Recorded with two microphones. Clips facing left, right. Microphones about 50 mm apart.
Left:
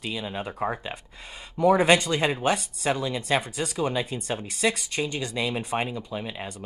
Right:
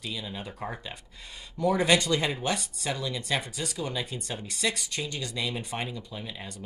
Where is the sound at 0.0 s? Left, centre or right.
Left.